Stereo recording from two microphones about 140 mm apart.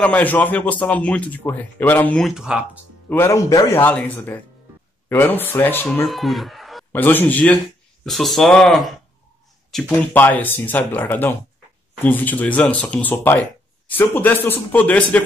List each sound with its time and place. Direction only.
0.0 s speech: 10° left (ahead or behind)
2.2 s speech: 5° right (ahead or behind)
3.1 s a man's voice: 20° left (ahead or behind)
6.0 s speech: centre (ahead or behind)
6.9 s speech: 15° left (ahead or behind)
8.0 s speech: centre (ahead or behind)
9.9 s speech: 15° left (ahead or behind)